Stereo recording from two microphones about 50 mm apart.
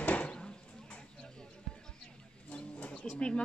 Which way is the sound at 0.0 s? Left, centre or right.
Left.